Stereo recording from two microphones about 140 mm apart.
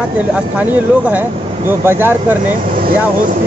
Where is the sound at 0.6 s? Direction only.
10° right (ahead or behind).